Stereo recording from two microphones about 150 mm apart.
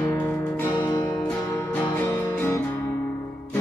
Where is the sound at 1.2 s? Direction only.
10° left (ahead or behind).